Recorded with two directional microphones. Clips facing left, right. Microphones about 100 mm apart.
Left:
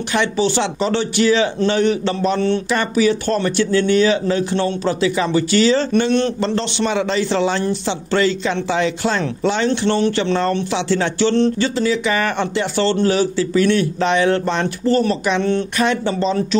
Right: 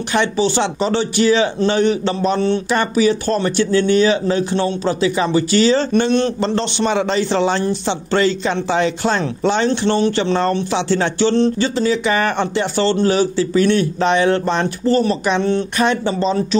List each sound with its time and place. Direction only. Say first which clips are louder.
0.1 s a man's voice: right 1 dB; 25° right (ahead or behind)